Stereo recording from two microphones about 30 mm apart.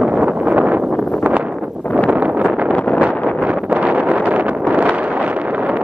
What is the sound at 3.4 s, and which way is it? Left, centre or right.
Wind noise, right.